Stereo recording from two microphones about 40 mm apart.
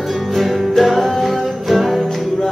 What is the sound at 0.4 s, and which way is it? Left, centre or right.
Music, centre.